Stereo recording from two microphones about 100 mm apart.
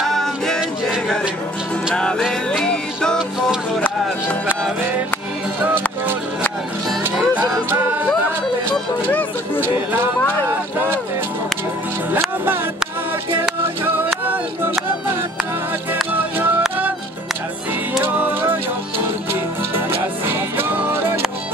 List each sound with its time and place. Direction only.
0.0 s music: 5° left (ahead or behind)
2.0 s music: 5° left (ahead or behind)
7.0 s music: 20° right (ahead or behind)
12.1 s music: 20° right (ahead or behind)
18.0 s music: 20° right (ahead or behind)
19.7 s music: 20° right (ahead or behind)